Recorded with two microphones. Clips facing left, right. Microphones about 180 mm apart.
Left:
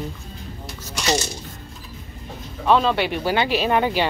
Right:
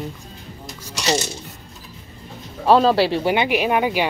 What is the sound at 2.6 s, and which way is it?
Speech, 35° right (ahead or behind).